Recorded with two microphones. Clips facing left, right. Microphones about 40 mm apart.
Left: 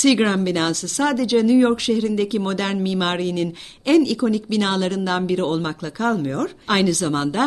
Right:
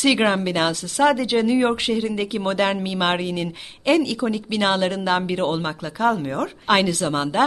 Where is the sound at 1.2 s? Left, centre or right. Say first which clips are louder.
Left 3 dB; right.